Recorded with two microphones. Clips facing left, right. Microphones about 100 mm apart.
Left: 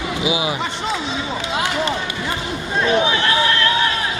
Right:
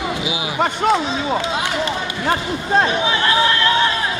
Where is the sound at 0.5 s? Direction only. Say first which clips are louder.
Right 7 dB; 55° right (ahead or behind).